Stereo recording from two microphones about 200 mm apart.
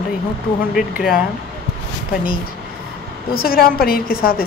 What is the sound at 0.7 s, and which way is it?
Speech, centre (ahead or behind).